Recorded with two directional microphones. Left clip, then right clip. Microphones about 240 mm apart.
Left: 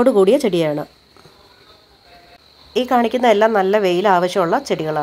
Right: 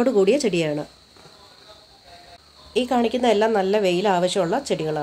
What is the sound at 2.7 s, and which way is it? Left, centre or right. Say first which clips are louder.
A woman's voice: left 5 dB; centre.